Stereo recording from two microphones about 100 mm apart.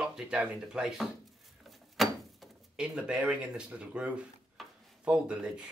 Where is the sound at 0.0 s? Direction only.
5° right (ahead or behind).